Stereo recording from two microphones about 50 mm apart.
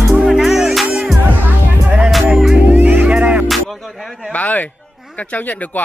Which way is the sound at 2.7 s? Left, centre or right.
Right.